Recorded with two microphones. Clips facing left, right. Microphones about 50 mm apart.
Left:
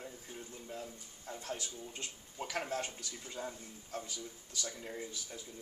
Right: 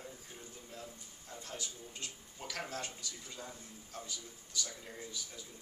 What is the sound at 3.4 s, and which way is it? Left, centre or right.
Speech, left.